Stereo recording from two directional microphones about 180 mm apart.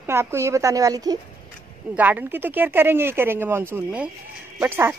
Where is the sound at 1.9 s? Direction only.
10° right (ahead or behind).